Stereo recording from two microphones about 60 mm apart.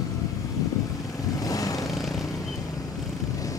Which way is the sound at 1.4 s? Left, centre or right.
Left.